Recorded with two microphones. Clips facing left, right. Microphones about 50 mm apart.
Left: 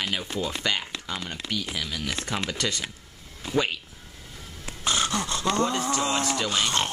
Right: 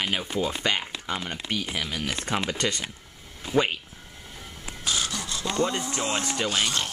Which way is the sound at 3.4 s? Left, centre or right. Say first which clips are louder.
Right 2 dB; centre.